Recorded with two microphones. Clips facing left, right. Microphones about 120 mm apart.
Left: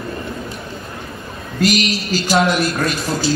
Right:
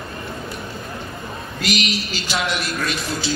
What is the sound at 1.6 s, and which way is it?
A man's voice, 40° left (ahead or behind).